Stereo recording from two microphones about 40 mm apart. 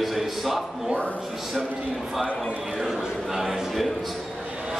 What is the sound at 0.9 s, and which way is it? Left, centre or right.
Speech, left.